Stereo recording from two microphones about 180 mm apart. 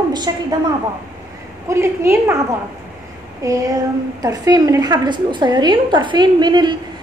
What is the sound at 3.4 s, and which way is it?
A woman's voice, 20° right (ahead or behind).